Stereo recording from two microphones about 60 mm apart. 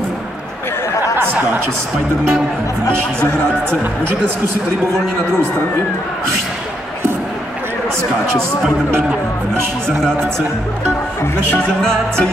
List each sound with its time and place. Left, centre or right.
1.1 s speech: right
9.5 s speech: centre
11.8 s speech: centre